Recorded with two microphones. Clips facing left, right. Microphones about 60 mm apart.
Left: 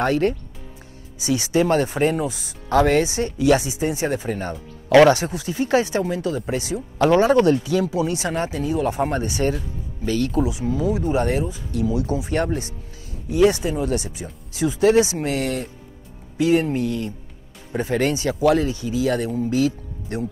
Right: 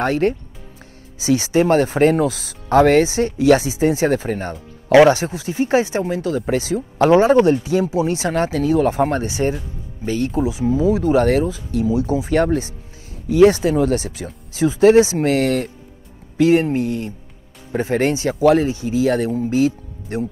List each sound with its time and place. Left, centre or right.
0.0 s speech: right
2.7 s speech: right
5.1 s speech: right
6.3 s speech: right
7.0 s speech: right
8.3 s speech: right
9.2 s speech: right
11.2 s speech: right
11.7 s speech: right
13.4 s speech: right
13.7 s speech: right
16.3 s speech: right